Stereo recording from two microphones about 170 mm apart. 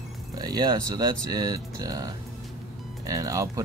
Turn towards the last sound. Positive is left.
turn(degrees=-20)  # may be behind; listen again after turning